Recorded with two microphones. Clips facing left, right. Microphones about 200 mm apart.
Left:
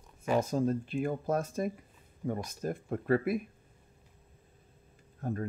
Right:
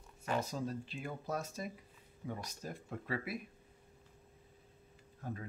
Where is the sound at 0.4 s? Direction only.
50° left (ahead or behind).